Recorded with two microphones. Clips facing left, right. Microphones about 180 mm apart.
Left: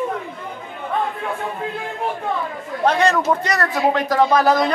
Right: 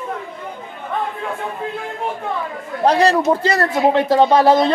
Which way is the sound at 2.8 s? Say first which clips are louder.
Right 3 dB; 35° right (ahead or behind).